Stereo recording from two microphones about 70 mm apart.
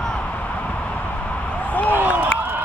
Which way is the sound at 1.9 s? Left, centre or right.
Right.